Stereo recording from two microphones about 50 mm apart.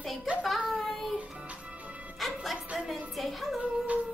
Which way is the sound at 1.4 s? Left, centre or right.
Right.